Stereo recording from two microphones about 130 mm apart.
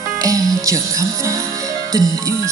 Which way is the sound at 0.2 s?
25° right (ahead or behind).